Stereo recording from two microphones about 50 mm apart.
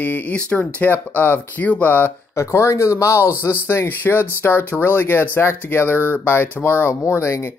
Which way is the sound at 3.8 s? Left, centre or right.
Left.